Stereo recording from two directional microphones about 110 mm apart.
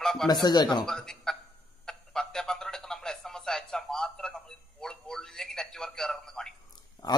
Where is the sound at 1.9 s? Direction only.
5° left (ahead or behind).